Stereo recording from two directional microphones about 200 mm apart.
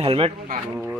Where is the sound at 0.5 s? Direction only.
50° right (ahead or behind).